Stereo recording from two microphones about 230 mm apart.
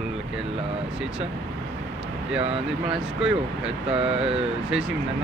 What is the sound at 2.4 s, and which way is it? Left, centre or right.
Speech, right.